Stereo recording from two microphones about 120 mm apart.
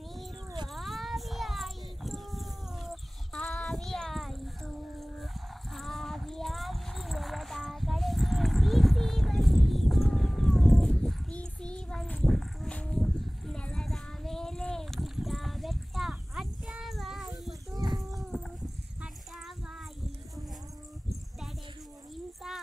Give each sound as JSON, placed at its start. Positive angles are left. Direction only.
{"t": 0.7, "sound": "child singing", "side_deg": 0}
{"t": 5.2, "sound": "clip-clop", "side_deg": 0}
{"t": 17.7, "sound": "livestock", "side_deg": -30}
{"t": 22.1, "sound": "a sound", "side_deg": 0}